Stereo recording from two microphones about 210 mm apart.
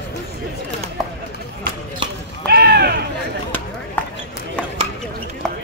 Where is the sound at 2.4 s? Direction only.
50° right (ahead or behind).